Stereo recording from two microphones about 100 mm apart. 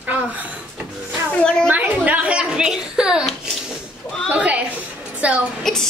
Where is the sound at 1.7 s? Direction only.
15° right (ahead or behind).